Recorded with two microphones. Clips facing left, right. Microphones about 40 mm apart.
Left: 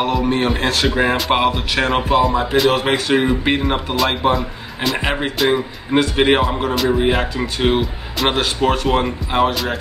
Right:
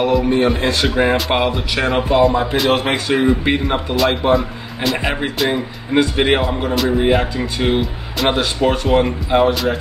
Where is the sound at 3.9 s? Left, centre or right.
Centre.